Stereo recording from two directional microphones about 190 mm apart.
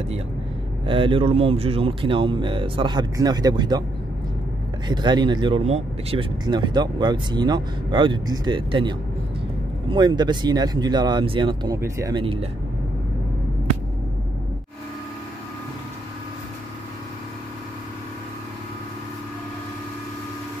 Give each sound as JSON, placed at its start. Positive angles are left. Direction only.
{"t": 0.8, "sound": "speech", "side_deg": -25}
{"t": 4.8, "sound": "speech", "side_deg": -20}